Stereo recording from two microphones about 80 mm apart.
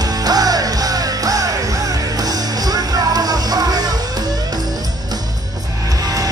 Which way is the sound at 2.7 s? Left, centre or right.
Right.